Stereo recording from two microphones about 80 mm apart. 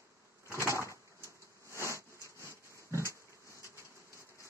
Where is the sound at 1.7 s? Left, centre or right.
Left.